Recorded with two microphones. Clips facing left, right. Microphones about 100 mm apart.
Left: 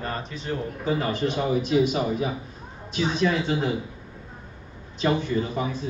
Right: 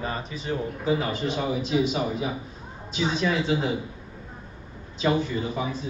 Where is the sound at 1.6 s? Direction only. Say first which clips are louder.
Left 2 dB; 50° left (ahead or behind).